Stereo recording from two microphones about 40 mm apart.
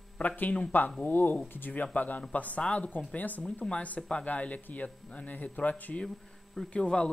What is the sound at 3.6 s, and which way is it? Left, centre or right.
Speech, left.